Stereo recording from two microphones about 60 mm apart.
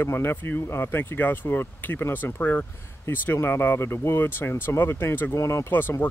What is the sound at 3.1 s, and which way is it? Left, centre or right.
Speech, left.